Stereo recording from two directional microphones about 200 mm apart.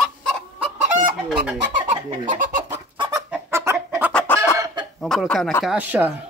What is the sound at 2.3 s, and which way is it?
Chicken, 40° right (ahead or behind).